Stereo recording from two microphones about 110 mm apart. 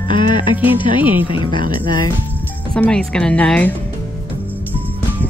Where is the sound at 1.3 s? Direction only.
50° left (ahead or behind).